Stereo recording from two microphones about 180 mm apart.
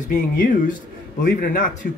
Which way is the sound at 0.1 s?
50° left (ahead or behind).